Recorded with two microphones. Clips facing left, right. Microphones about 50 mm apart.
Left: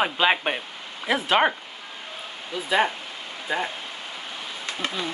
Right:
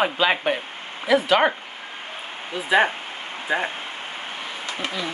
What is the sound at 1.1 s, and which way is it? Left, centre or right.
Speech, left.